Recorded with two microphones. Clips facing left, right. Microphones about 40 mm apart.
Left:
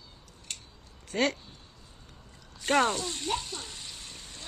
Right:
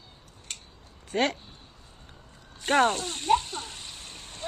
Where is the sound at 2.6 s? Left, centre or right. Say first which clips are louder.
Right 3 dB; right.